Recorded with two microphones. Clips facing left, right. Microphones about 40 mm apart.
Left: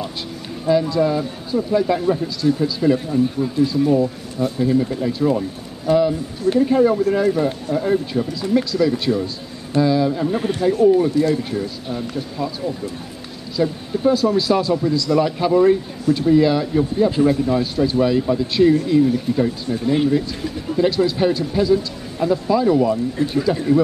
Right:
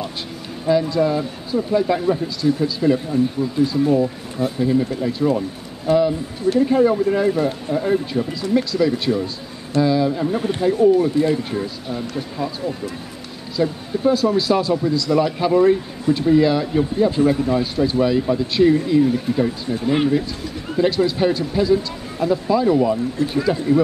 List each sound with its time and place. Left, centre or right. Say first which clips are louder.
0.7 s speech: even; centre
11.1 s speech: even; centre
11.9 s speech: even; centre